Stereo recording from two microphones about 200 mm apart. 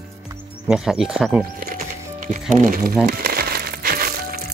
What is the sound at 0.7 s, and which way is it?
Speech, centre (ahead or behind).